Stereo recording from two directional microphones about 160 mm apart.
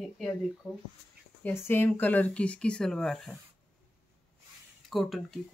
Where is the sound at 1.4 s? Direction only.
15° left (ahead or behind).